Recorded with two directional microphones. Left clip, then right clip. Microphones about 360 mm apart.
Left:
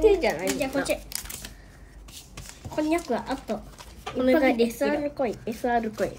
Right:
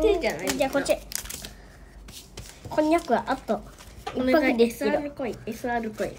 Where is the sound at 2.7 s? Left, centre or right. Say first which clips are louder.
Right 4 dB; centre.